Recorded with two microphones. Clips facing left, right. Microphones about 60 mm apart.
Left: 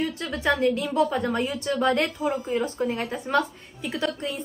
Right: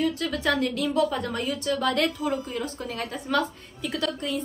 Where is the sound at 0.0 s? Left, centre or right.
Left.